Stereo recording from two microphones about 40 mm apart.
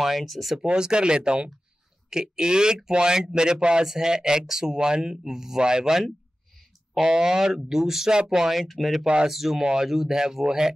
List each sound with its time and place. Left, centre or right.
0.0 s speech: centre
0.6 s speech: right
7.0 s speech: centre
9.0 s speech: right
9.3 s speech: centre
9.6 s speech: right
9.8 s speech: centre